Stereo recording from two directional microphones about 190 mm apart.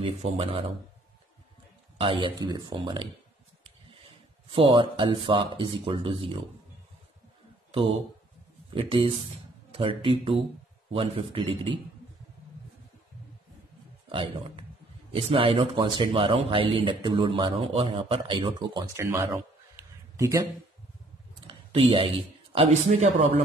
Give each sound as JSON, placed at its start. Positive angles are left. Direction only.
{"t": 0.0, "sound": "speech", "side_deg": -30}
{"t": 2.0, "sound": "speech", "side_deg": -25}
{"t": 4.5, "sound": "speech", "side_deg": -30}
{"t": 8.7, "sound": "speech", "side_deg": -30}
{"t": 14.0, "sound": "speech", "side_deg": -30}
{"t": 21.5, "sound": "speech", "side_deg": -30}